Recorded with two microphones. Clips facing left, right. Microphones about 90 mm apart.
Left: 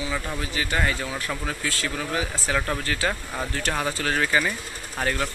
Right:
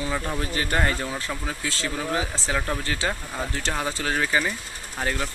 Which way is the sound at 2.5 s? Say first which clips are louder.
Left 1 dB; 10° right (ahead or behind).